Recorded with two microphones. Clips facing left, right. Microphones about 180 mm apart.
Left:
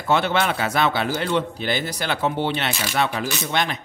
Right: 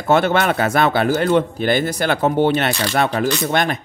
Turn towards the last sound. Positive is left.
turn(degrees=-50)  # may be behind; listen again after turning